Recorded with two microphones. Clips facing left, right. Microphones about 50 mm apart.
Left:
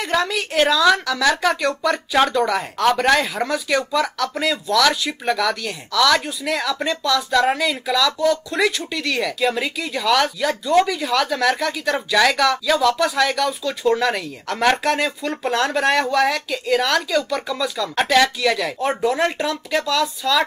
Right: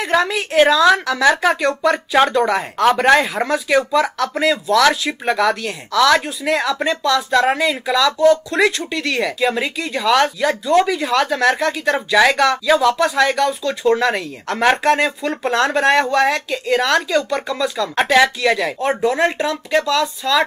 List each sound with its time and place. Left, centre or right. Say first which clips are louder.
0.0 s speech: right 3 dB; centre
17.9 s speech: right 3 dB; centre